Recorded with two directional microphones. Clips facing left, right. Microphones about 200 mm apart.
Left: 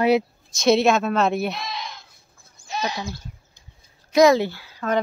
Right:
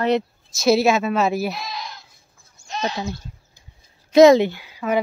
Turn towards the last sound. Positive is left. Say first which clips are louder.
# right 2 dB
turn(degrees=-15)  # may be behind; listen again after turning